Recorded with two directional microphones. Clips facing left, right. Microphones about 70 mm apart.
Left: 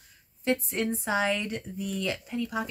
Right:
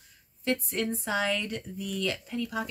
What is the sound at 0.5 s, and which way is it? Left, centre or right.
A woman's voice, left.